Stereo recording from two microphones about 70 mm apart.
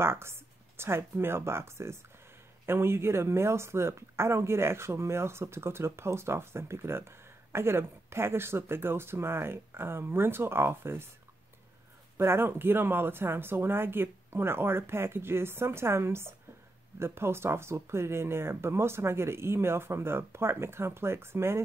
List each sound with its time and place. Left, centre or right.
0.0 s speech: right
12.2 s speech: right